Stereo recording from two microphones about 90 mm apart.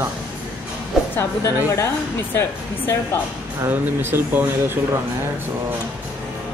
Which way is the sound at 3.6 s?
25° right (ahead or behind).